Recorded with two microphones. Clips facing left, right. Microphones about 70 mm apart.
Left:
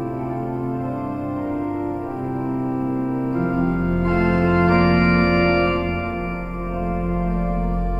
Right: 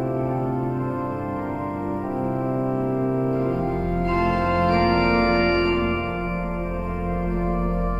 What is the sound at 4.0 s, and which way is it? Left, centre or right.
Organ, left.